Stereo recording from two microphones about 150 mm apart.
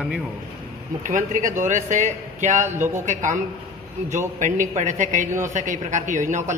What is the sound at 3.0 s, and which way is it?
A man's voice, 55° right (ahead or behind).